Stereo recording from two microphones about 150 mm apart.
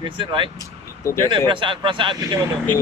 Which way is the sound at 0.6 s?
20° left (ahead or behind).